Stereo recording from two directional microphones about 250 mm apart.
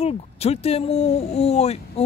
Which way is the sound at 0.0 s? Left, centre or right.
Left.